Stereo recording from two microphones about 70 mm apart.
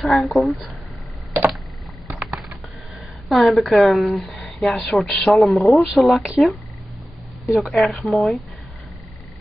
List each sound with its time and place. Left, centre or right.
0.0 s speech: centre
3.3 s speech: centre